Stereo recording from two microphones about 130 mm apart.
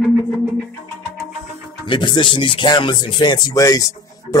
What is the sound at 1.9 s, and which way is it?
Speech, 35° left (ahead or behind).